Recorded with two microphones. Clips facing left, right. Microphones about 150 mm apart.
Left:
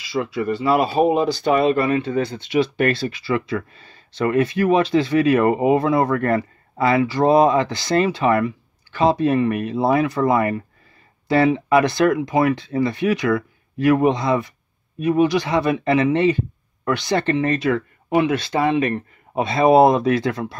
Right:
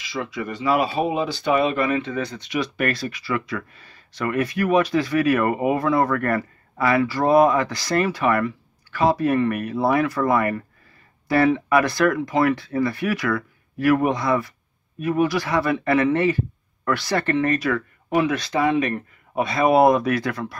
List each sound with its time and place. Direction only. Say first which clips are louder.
0.4 s speech: left 3 dB; 35° left (ahead or behind)